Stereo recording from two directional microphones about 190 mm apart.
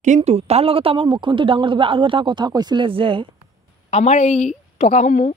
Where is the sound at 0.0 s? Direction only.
35° right (ahead or behind).